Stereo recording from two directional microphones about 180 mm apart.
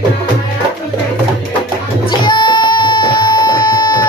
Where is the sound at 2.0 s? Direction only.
25° left (ahead or behind).